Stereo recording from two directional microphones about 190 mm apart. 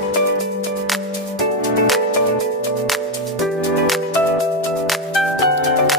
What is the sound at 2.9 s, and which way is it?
Music, centre (ahead or behind).